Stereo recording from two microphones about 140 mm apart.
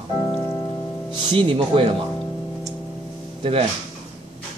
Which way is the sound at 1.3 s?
35° right (ahead or behind).